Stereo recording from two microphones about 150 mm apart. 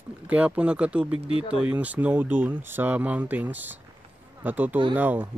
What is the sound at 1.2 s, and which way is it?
Speech, 40° left (ahead or behind).